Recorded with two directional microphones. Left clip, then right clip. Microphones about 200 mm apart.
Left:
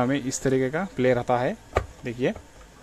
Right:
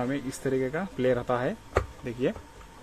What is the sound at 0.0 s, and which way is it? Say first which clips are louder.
Speech: left 6 dB; 25° left (ahead or behind).